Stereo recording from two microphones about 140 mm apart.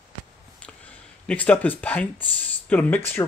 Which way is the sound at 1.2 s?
10° left (ahead or behind).